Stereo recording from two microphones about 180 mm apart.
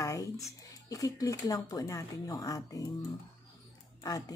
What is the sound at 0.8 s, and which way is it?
Speech, 20° left (ahead or behind).